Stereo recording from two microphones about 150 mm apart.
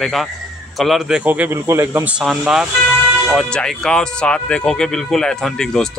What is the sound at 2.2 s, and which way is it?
Speech, centre (ahead or behind).